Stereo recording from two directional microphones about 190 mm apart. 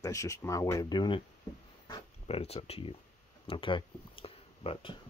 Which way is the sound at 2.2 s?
30° left (ahead or behind).